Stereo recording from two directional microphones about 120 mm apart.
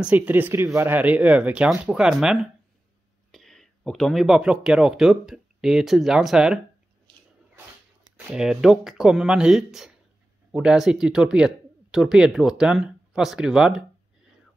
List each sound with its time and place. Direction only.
0.0 s speech: 15° right (ahead or behind)
8.3 s speech: 5° right (ahead or behind)